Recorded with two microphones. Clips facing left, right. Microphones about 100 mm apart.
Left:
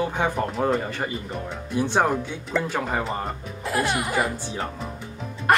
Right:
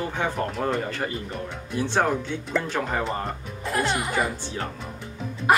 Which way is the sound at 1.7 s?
15° left (ahead or behind).